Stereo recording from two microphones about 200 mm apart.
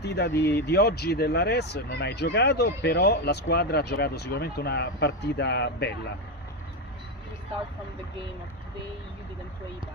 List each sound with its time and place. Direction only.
0.0 s speech: 60° left (ahead or behind)